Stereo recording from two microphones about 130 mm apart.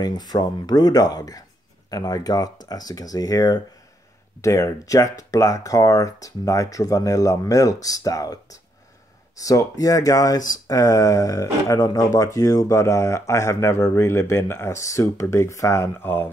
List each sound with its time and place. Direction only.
0.0 s speech: 30° left (ahead or behind)
9.4 s speech: 25° left (ahead or behind)